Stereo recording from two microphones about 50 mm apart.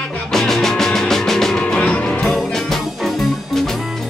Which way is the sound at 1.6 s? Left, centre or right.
Left.